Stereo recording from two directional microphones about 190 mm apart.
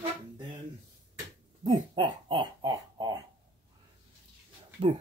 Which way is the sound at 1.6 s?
25° right (ahead or behind).